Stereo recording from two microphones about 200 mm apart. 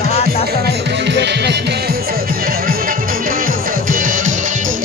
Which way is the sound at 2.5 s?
45° right (ahead or behind).